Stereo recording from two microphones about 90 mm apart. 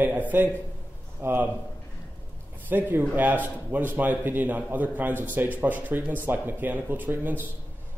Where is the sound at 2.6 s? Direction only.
20° right (ahead or behind).